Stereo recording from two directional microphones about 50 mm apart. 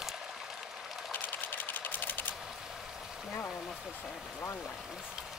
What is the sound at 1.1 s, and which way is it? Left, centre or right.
Sewing machine, left.